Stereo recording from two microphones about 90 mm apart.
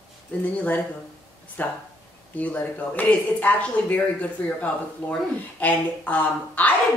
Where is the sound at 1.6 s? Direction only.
20° left (ahead or behind).